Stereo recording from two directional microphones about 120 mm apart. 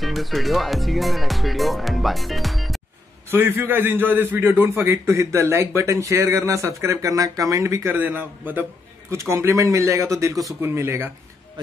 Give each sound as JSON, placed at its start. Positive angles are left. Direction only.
{"t": 0.0, "sound": "speech", "side_deg": 0}
{"t": 3.3, "sound": "a man's voice", "side_deg": -20}